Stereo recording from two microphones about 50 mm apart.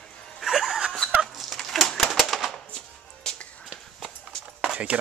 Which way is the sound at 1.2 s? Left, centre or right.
Centre.